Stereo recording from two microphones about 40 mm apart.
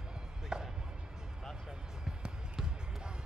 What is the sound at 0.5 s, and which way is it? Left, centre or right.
Chop, right.